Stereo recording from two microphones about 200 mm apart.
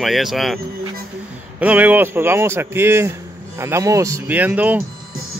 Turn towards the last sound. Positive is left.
turn(degrees=-10)  # may be behind; listen again after turning